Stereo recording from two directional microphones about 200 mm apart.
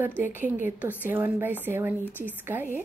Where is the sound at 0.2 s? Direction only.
10° right (ahead or behind).